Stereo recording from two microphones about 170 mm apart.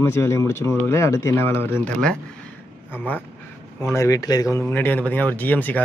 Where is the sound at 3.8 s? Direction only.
15° left (ahead or behind).